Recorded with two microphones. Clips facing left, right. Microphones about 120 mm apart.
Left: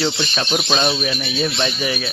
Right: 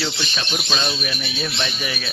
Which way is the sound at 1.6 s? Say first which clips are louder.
Left 5 dB; 25° left (ahead or behind).